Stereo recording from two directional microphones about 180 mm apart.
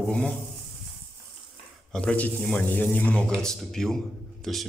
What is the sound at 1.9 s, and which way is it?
A man's voice, 5° left (ahead or behind).